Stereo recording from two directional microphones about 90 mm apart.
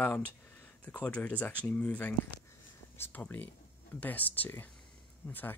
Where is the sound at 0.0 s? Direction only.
20° left (ahead or behind).